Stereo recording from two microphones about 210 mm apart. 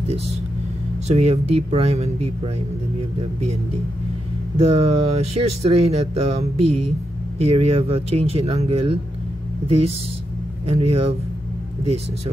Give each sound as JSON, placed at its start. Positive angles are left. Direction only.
{"t": 1.0, "sound": "speech", "side_deg": -30}
{"t": 4.6, "sound": "speech", "side_deg": -30}
{"t": 10.7, "sound": "speech", "side_deg": -30}